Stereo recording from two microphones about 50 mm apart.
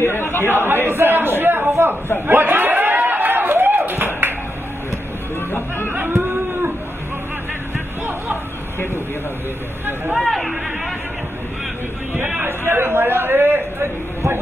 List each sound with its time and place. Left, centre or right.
0.0 s chatter: left
0.5 s a man's voice: right
2.2 s a sound: right
5.9 s a sound: right
10.2 s speech: centre
12.1 s speech: right
12.4 s a man's voice: right